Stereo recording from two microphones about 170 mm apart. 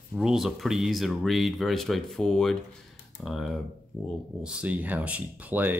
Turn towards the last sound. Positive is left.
turn(degrees=-10)  # may be behind; listen again after turning